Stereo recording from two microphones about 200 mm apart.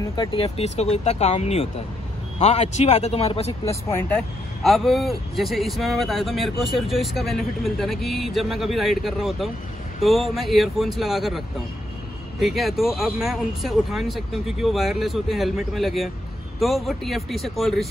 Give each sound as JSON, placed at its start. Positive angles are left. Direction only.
{"t": 0.0, "sound": "speech", "side_deg": 20}
{"t": 3.6, "sound": "speech", "side_deg": 10}
{"t": 4.6, "sound": "speech", "side_deg": 0}